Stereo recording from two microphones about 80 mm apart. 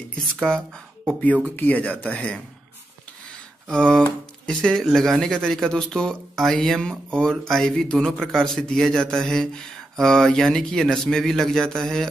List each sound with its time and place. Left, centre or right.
0.2 s speech: centre
1.2 s speech: centre
3.6 s speech: centre